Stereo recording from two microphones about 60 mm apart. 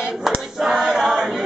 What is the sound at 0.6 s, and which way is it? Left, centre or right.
Choir, centre.